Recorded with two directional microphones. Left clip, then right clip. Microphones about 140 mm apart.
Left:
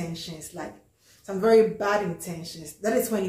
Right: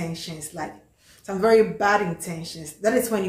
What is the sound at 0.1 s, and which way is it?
A woman's voice, 10° right (ahead or behind).